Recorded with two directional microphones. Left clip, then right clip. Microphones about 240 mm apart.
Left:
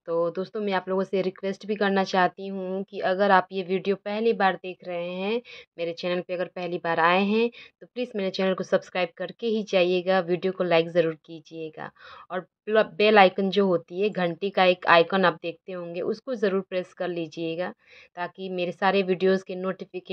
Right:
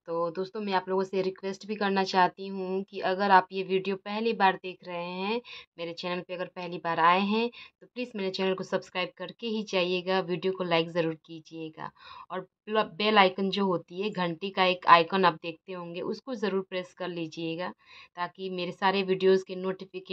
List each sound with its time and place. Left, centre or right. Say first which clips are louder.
0.0 s speech: left 5 dB; centre